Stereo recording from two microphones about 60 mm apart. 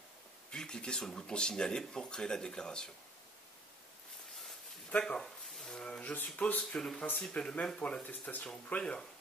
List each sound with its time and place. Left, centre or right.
0.5 s speech: centre
4.9 s speech: centre
6.6 s speech: centre
8.0 s speech: left